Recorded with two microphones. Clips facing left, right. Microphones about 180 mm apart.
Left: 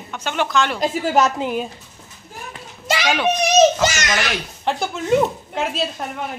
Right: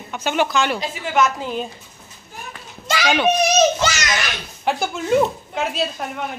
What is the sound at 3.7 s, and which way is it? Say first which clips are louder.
Children playing: left 2 dB; 45° left (ahead or behind).